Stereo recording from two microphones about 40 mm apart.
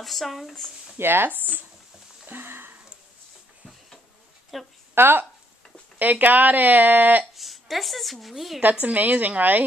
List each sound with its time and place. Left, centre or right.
0.0 s speech: centre
0.9 s speech: right
2.2 s sniff: right
4.5 s speech: centre
4.9 s speech: right
5.9 s speech: right
7.3 s a woman's voice: centre
8.8 s a woman's voice: right